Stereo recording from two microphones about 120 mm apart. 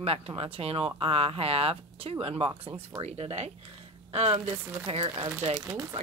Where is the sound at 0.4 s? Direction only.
55° right (ahead or behind).